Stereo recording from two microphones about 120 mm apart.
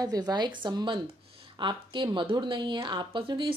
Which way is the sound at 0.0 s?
35° right (ahead or behind).